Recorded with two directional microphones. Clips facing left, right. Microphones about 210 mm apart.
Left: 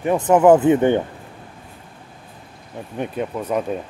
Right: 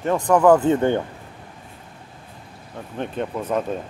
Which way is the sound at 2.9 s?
10° left (ahead or behind).